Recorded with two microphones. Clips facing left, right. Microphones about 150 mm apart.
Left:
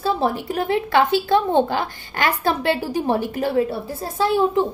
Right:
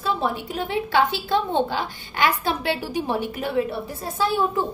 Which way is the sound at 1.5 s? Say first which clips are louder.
Left 4 dB; 50° left (ahead or behind).